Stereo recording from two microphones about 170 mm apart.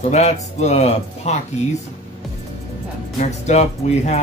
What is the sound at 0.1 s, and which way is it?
Speech, 40° left (ahead or behind).